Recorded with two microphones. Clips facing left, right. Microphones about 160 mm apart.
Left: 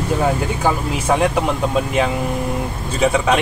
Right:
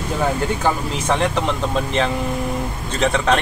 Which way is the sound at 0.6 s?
10° left (ahead or behind).